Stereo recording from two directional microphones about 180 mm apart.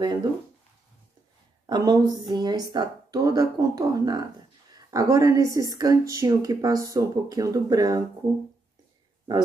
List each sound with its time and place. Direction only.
0.0 s speech: 25° right (ahead or behind)
1.7 s speech: 20° right (ahead or behind)